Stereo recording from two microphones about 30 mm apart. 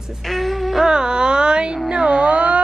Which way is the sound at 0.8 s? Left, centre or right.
Right.